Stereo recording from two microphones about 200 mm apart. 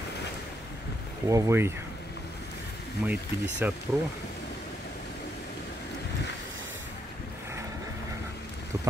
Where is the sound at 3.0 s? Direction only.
5° right (ahead or behind).